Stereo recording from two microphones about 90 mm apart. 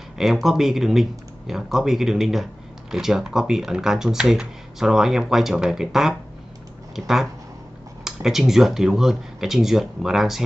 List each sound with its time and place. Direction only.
0.2 s speech: centre (ahead or behind)
8.0 s speech: 5° right (ahead or behind)